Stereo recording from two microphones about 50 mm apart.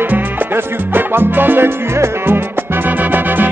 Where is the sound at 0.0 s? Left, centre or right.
Right.